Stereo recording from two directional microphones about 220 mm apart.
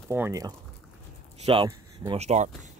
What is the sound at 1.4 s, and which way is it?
Speech, 25° right (ahead or behind).